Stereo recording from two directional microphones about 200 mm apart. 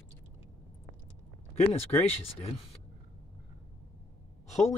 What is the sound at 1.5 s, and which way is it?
Speech, 30° left (ahead or behind).